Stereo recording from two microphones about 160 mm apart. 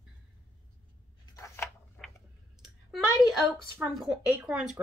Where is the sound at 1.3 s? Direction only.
15° left (ahead or behind).